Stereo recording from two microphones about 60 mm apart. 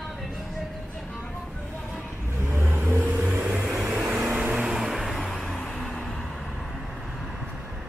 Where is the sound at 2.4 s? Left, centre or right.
Right.